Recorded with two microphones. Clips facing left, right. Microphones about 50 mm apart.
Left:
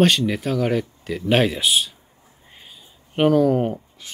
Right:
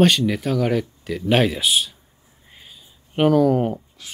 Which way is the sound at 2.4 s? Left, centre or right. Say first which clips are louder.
Even; centre.